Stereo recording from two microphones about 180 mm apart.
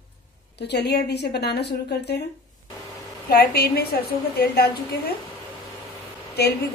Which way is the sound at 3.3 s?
60° left (ahead or behind).